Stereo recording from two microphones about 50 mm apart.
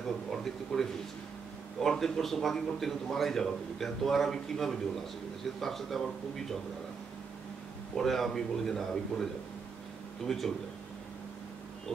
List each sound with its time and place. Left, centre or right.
0.3 s a man's voice: centre
7.9 s a man's voice: centre